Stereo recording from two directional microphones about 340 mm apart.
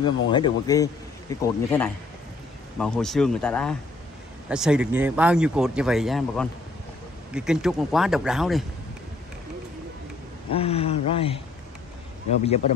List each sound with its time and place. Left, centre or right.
0.0 s speech: centre
10.5 s speech: centre